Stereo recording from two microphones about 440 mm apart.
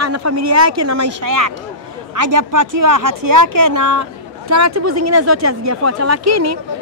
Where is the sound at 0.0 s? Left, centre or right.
Right.